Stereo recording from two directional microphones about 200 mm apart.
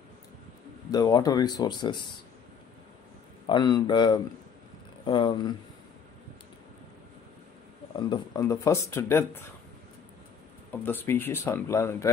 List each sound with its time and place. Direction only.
0.9 s speech: 20° left (ahead or behind)
3.4 s speech: 20° left (ahead or behind)
8.1 s speech: 20° left (ahead or behind)
10.7 s speech: 10° left (ahead or behind)